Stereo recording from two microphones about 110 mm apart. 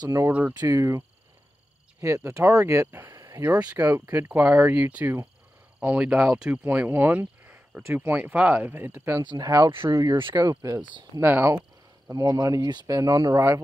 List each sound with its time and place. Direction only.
0.1 s speech: 15° right (ahead or behind)
0.6 s speech: 30° right (ahead or behind)
3.2 s a sound: 30° right (ahead or behind)
3.4 s speech: 15° right (ahead or behind)
5.8 s speech: 10° right (ahead or behind)
9.2 s speech: 40° right (ahead or behind)
9.8 s speech: 25° right (ahead or behind)
10.0 s speech: 45° right (ahead or behind)
10.8 s speech: 45° right (ahead or behind)
11.1 s speech: 20° right (ahead or behind)
12.1 s speech: 35° right (ahead or behind)